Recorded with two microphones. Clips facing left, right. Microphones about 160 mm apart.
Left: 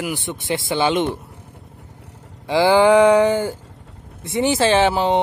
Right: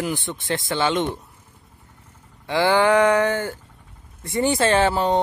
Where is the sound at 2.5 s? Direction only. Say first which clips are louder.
Left 4 dB; 10° left (ahead or behind).